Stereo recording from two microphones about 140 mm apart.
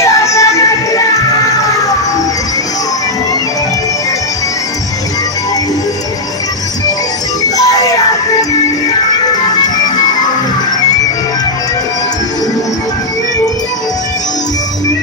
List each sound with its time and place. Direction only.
0.0 s music: 20° left (ahead or behind)
7.4 s music: 25° left (ahead or behind)